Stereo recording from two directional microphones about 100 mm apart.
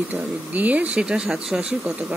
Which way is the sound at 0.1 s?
15° right (ahead or behind).